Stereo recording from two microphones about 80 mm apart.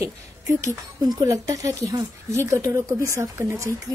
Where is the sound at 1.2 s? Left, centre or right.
Right.